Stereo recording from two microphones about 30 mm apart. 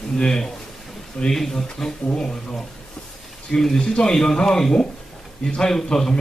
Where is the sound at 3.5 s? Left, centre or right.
Left.